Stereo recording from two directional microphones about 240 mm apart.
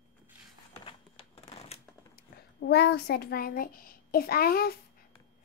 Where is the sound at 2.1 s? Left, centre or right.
Left.